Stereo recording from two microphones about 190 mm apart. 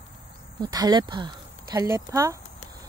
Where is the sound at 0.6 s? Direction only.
20° right (ahead or behind).